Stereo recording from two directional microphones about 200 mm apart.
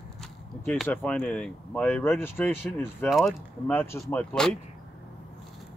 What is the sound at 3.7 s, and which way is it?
Speech, 10° left (ahead or behind).